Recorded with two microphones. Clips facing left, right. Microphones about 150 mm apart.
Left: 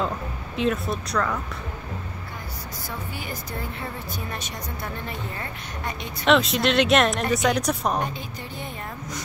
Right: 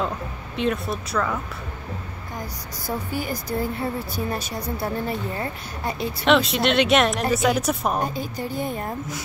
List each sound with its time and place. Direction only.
0.6 s speech: centre (ahead or behind)
2.9 s a woman's voice: 40° right (ahead or behind)
6.2 s speech: centre (ahead or behind)
8.0 s a woman's voice: 40° right (ahead or behind)